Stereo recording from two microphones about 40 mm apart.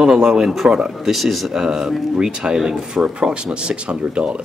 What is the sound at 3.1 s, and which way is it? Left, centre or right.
Speech, right.